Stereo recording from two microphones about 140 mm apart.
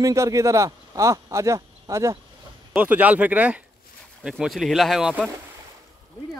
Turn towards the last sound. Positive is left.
turn(degrees=0)  # may be behind; listen again after turning